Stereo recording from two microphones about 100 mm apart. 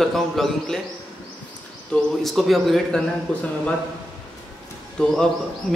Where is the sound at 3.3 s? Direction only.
10° left (ahead or behind).